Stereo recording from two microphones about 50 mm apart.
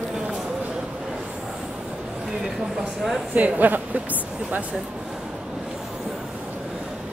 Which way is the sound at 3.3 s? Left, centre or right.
Right.